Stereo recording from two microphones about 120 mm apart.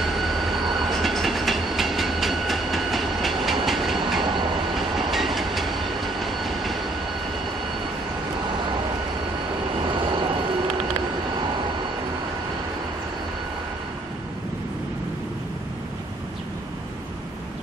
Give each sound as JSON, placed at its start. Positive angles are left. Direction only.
{"t": 0.4, "sound": "train", "side_deg": 0}
{"t": 9.8, "sound": "vehicle", "side_deg": -40}